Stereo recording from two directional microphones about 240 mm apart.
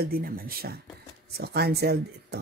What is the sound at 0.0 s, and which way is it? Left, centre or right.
A woman's voice, right.